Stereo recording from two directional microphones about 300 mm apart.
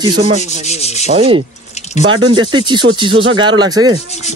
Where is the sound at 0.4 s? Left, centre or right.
Left.